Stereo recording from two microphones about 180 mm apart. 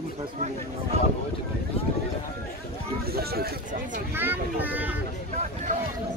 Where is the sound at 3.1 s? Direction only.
60° right (ahead or behind).